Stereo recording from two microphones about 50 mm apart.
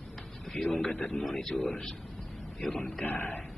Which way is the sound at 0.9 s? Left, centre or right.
Left.